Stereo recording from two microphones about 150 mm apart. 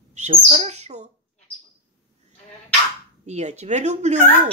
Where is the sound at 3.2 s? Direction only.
50° right (ahead or behind).